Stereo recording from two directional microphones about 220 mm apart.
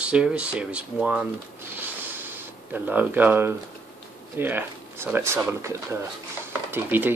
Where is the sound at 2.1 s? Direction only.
10° right (ahead or behind).